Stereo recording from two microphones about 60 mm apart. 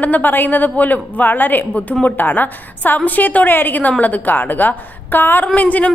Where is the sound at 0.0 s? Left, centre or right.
Left.